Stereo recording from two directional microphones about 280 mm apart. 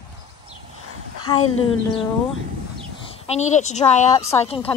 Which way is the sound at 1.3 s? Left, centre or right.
Left.